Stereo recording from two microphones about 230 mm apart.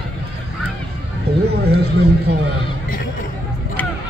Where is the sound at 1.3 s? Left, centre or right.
Right.